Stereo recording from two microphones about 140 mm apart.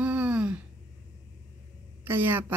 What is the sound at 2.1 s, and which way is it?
Speech, 15° right (ahead or behind).